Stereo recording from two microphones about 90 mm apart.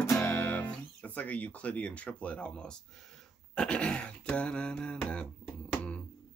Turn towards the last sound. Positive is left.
turn(degrees=15)  # may be behind; listen again after turning